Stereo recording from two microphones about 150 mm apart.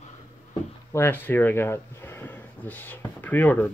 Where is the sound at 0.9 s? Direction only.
15° left (ahead or behind).